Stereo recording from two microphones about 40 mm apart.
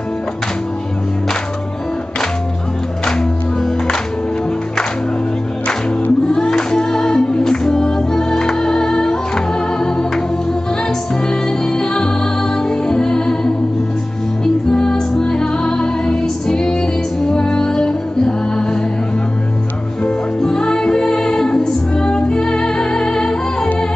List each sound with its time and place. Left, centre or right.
6.2 s music: centre
11.2 s music: centre
14.7 s music: centre
20.4 s music: centre